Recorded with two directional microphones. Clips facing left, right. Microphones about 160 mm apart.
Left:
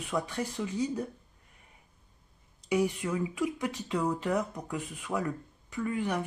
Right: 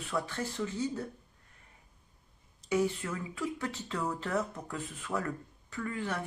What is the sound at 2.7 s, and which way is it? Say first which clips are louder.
Speech: left 2 dB; 15° left (ahead or behind).